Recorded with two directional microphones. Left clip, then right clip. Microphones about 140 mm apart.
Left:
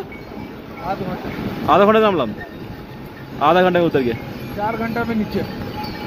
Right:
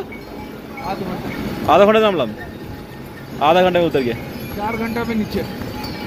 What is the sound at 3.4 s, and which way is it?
Speech, 30° left (ahead or behind).